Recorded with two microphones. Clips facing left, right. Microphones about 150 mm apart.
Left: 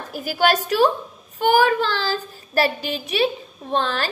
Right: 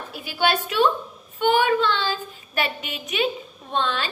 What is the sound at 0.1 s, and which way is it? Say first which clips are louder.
A woman's voice: left 4 dB; 40° left (ahead or behind).